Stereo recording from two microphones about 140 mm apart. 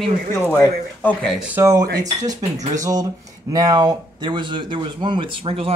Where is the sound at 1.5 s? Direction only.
20° right (ahead or behind); by 5.7 s 40° right (ahead or behind).